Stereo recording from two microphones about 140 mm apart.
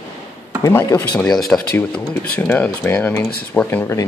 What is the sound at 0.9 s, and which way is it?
Speech, 20° left (ahead or behind).